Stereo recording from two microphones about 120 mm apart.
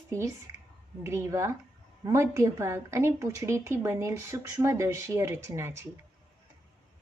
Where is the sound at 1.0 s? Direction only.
25° right (ahead or behind).